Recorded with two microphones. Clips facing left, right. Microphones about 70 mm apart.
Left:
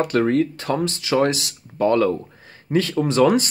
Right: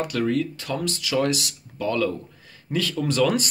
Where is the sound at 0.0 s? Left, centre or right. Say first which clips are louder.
Left 5 dB; left.